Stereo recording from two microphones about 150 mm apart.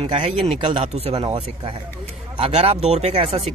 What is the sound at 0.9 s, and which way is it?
Speech, 45° right (ahead or behind).